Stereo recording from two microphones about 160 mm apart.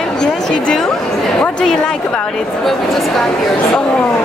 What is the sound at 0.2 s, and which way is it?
A woman's voice, 5° left (ahead or behind).